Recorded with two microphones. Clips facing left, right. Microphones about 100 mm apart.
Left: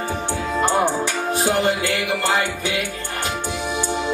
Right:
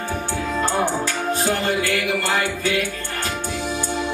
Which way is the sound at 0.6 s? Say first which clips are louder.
Left 3 dB; 20° left (ahead or behind).